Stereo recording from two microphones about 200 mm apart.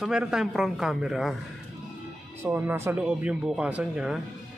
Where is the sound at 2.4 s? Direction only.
10° right (ahead or behind).